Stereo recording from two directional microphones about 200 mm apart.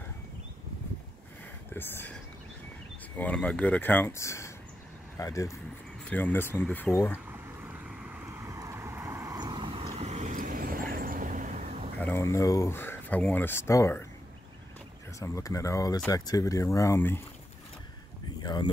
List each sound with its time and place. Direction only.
1.7 s speech: 10° left (ahead or behind)
3.2 s speech: 5° left (ahead or behind)
7.6 s vehicle: 5° right (ahead or behind); by 11.9 s 40° right (ahead or behind)
12.0 s speech: 10° left (ahead or behind)
15.1 s speech: 15° left (ahead or behind)
18.4 s a sound: 20° left (ahead or behind)